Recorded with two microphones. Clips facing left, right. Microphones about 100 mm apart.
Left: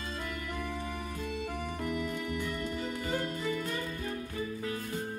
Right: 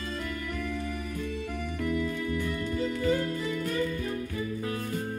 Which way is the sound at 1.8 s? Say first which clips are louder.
Right 6 dB; 30° left (ahead or behind).